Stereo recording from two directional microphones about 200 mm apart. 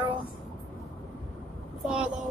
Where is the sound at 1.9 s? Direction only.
5° right (ahead or behind).